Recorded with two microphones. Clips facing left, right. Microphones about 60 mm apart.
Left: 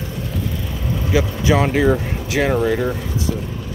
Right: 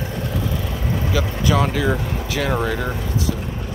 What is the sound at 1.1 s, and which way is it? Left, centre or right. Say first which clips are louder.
Speech: left 4 dB; left.